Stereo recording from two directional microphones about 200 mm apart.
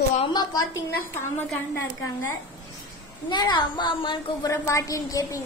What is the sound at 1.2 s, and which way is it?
Speech, 10° left (ahead or behind).